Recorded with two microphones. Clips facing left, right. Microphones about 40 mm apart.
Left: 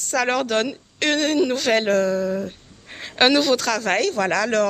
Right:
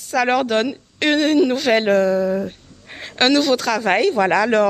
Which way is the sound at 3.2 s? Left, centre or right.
Centre.